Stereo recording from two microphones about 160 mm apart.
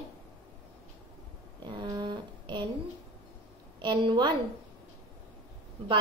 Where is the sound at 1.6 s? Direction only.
30° right (ahead or behind).